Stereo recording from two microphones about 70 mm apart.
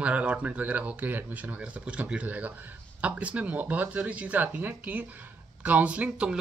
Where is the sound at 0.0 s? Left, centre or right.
Centre.